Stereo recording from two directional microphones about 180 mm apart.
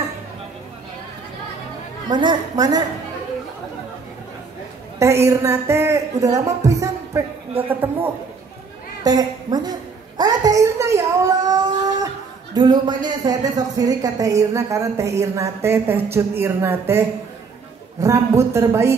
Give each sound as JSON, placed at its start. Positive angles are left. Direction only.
{"t": 2.0, "sound": "a woman's voice", "side_deg": -25}
{"t": 4.9, "sound": "speech", "side_deg": -15}
{"t": 9.0, "sound": "a sound", "side_deg": -20}
{"t": 12.5, "sound": "speech", "side_deg": -25}
{"t": 18.0, "sound": "speech", "side_deg": -15}